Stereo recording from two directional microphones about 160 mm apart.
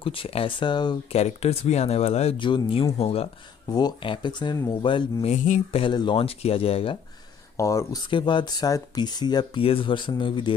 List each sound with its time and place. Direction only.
0.0 s speech: 35° left (ahead or behind)
1.1 s speech: 40° left (ahead or behind)
3.6 s speech: 25° left (ahead or behind)
5.3 s speech: 50° left (ahead or behind)
5.7 s speech: 35° left (ahead or behind)
7.5 s speech: 20° left (ahead or behind)
8.1 s speech: 30° left (ahead or behind)